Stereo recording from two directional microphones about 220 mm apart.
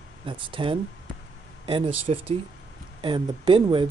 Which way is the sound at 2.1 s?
30° right (ahead or behind).